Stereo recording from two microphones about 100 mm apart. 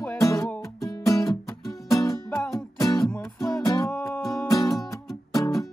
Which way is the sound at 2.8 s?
35° left (ahead or behind).